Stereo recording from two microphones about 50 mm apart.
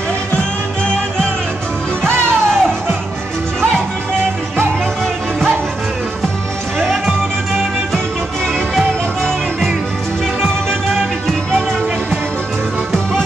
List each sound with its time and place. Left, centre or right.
0.4 s music: centre